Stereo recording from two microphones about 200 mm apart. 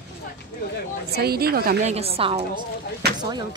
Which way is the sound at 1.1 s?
50° right (ahead or behind).